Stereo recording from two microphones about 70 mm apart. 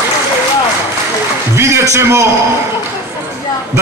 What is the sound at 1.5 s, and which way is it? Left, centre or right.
Speech, right.